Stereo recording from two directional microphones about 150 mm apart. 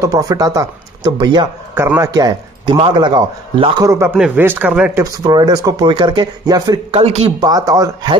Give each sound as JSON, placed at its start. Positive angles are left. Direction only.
{"t": 0.0, "sound": "speech", "side_deg": -20}
{"t": 1.8, "sound": "speech", "side_deg": -15}
{"t": 2.0, "sound": "speech", "side_deg": -25}
{"t": 3.8, "sound": "speech", "side_deg": -20}
{"t": 5.0, "sound": "speech", "side_deg": -25}
{"t": 6.9, "sound": "speech", "side_deg": -45}
{"t": 7.3, "sound": "speech", "side_deg": -25}